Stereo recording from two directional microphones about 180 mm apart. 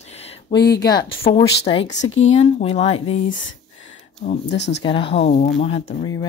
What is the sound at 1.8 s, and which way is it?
Speech, 90° left.